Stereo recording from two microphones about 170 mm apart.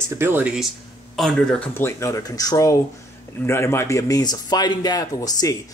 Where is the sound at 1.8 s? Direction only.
15° left (ahead or behind).